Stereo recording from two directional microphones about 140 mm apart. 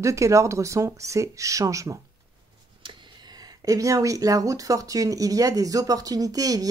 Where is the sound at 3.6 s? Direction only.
25° right (ahead or behind).